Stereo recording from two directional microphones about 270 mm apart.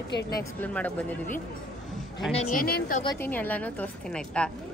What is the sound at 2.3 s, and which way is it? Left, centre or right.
Speech, left.